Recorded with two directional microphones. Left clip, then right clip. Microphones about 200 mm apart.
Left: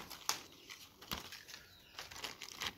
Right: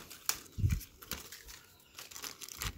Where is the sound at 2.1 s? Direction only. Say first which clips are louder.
Right 2 dB; 10° right (ahead or behind).